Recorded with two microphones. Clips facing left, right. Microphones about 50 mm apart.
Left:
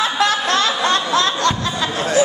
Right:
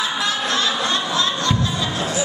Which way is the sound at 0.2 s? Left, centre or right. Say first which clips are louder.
Left 6 dB; left.